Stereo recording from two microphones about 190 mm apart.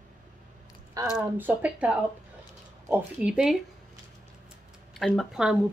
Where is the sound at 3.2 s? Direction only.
5° right (ahead or behind).